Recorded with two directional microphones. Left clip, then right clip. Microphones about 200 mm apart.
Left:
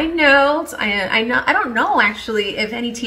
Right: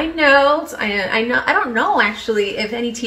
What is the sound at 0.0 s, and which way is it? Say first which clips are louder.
A woman's voice: even; centre (ahead or behind).